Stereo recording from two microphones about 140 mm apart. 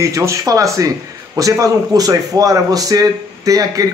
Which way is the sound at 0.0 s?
20° right (ahead or behind).